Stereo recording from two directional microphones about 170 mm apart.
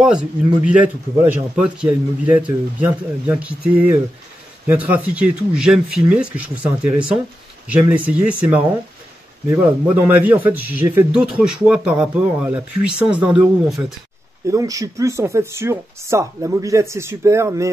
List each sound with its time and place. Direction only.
0.0 s speech: 5° right (ahead or behind)
10.0 s speech: 10° right (ahead or behind)
14.5 s speech: 20° right (ahead or behind)